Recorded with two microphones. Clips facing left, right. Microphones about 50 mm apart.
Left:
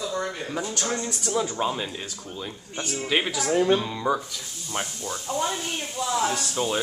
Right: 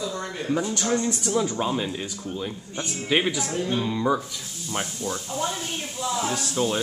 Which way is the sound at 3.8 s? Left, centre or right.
Centre.